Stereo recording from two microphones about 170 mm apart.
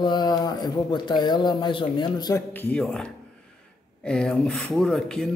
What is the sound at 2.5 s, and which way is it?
Speech, 10° left (ahead or behind).